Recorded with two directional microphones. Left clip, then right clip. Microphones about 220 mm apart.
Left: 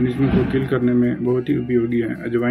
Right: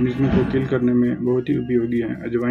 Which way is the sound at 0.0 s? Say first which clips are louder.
Left 1 dB; 15° left (ahead or behind).